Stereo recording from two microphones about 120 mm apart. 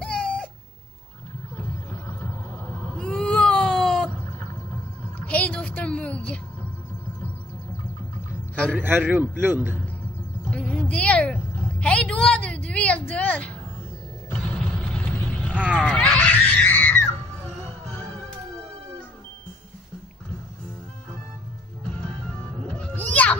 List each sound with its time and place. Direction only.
0.0 s a sound: 10° left (ahead or behind)
3.0 s baby cry: 10° left (ahead or behind)
5.2 s a sound: 10° left (ahead or behind)
8.7 s a man's voice: 15° right (ahead or behind)
10.5 s a sound: 10° left (ahead or behind)
10.8 s a woman's voice: 10° left (ahead or behind)
14.3 s vehicle: 5° left (ahead or behind)
15.5 s speech: 5° right (ahead or behind)
15.9 s snicker: 10° left (ahead or behind)
16.2 s baby laughter: 15° left (ahead or behind)
17.5 s heart sounds: 10° left (ahead or behind)
21.8 s music: 10° left (ahead or behind)
22.7 s a sound: 10° left (ahead or behind)